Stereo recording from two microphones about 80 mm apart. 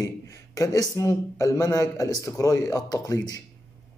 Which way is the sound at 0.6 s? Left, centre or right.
Left.